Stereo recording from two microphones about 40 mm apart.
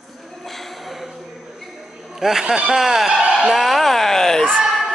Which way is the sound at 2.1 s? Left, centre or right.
Centre.